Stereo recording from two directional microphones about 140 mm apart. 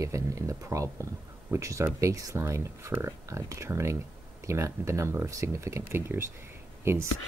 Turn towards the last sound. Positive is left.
turn(degrees=-20)  # may be behind; listen again after turning